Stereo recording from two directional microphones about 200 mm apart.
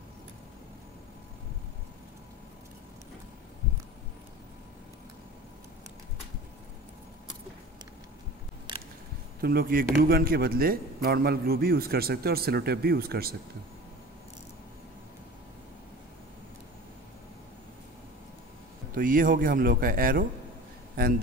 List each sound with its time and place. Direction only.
9.4 s a man's voice: 45° right (ahead or behind)
18.9 s a man's voice: 45° right (ahead or behind)